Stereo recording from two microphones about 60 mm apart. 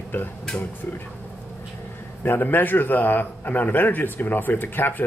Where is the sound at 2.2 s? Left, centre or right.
Left.